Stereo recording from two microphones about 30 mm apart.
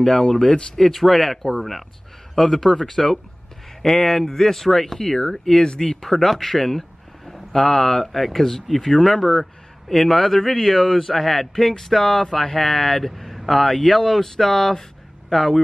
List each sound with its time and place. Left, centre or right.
0.0 s speech: centre
5.7 s speech: left
5.9 s speech: centre